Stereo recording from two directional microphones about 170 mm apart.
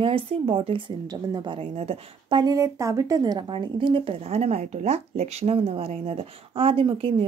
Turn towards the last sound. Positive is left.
turn(degrees=-30)  # may be behind; listen again after turning